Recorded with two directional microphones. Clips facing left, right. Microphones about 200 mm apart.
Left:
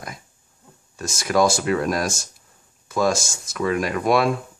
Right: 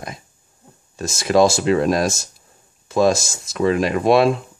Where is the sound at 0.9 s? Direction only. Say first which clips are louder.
Right 4 dB; 25° right (ahead or behind).